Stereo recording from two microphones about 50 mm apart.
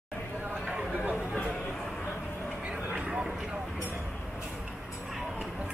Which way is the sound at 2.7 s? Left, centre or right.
Centre.